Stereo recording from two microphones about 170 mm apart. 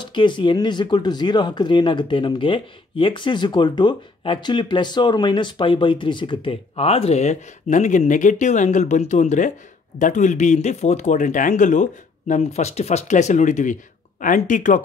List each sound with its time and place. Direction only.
0.0 s speech: 25° left (ahead or behind); by 14.8 s 50° left (ahead or behind)